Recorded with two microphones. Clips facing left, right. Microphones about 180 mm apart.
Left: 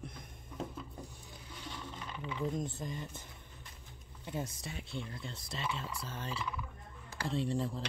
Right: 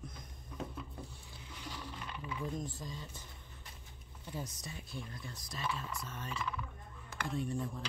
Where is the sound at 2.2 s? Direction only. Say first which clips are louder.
Left 4 dB; 25° left (ahead or behind).